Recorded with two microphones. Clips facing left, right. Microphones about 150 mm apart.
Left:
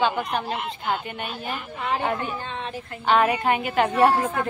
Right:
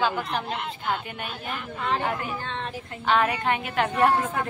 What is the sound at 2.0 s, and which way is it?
Speech, 25° left (ahead or behind).